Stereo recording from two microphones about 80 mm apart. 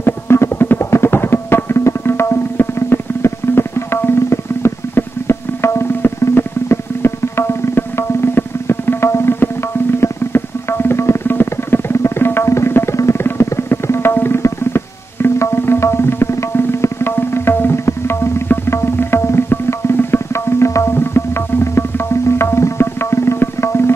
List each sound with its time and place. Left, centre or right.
0.0 s music: left
21.7 s tabla: left